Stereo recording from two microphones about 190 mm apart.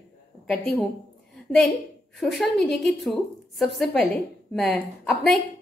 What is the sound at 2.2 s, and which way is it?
A woman's voice, centre (ahead or behind).